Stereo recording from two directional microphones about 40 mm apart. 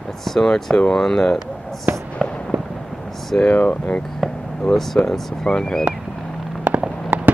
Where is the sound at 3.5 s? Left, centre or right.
Left.